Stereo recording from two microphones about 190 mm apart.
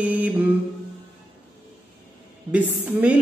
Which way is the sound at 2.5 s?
10° right (ahead or behind).